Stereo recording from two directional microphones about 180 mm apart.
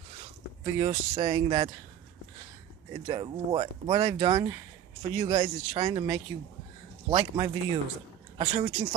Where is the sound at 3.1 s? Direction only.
25° right (ahead or behind).